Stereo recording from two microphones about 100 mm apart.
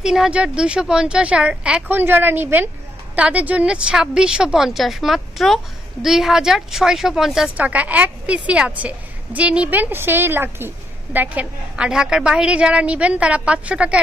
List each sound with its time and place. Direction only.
0.0 s a woman's voice: 5° right (ahead or behind)
7.5 s a woman's voice: 15° right (ahead or behind)